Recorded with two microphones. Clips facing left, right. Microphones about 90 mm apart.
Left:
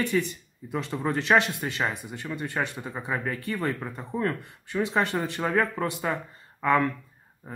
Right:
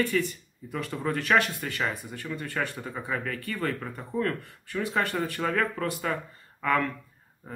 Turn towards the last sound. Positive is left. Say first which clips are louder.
# even
turn(degrees=20)  # may be behind; listen again after turning